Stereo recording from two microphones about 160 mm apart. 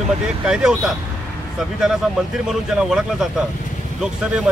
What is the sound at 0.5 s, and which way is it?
Speech, 5° right (ahead or behind).